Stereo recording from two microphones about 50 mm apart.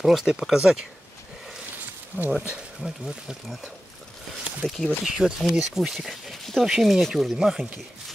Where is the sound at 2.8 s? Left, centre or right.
Centre.